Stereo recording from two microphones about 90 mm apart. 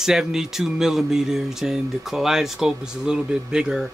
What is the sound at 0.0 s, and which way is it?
Speech, 5° right (ahead or behind).